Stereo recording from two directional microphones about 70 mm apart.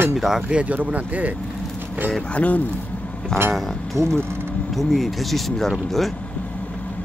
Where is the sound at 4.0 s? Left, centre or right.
Right.